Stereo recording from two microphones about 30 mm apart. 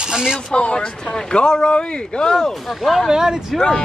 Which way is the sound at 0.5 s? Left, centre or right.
Left.